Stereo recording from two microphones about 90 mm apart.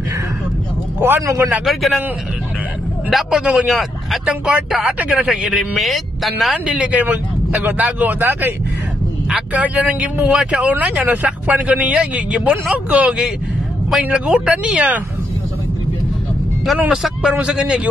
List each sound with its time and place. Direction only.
1.2 s speech: 35° right (ahead or behind)
1.6 s speech: centre (ahead or behind)
3.1 s speech: 5° right (ahead or behind)
4.5 s speech: 10° right (ahead or behind)
6.6 s speech: 15° right (ahead or behind)
9.3 s speech: 10° right (ahead or behind)
16.9 s speech: 10° right (ahead or behind)